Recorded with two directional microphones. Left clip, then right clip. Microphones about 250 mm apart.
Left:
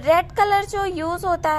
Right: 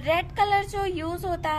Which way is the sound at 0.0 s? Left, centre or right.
Centre.